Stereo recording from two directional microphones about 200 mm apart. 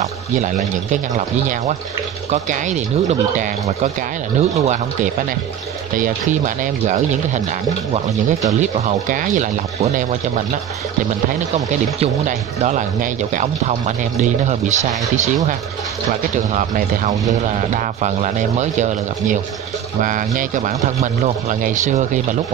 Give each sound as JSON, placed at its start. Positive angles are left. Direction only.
{"t": 0.4, "sound": "speech", "side_deg": -40}
{"t": 8.5, "sound": "speech", "side_deg": -40}
{"t": 11.5, "sound": "speech", "side_deg": -35}
{"t": 16.5, "sound": "speech", "side_deg": -40}